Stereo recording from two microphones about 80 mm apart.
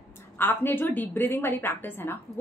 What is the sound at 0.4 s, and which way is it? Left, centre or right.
A woman's voice, left.